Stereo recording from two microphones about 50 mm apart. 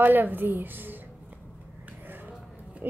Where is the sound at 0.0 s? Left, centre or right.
Right.